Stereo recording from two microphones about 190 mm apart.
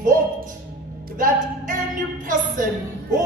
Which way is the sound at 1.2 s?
45° right (ahead or behind).